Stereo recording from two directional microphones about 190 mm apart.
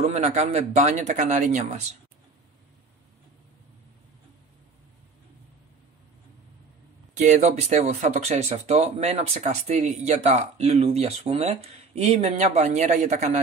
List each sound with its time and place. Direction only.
0.0 s speech: 40° right (ahead or behind)
7.2 s speech: 40° right (ahead or behind)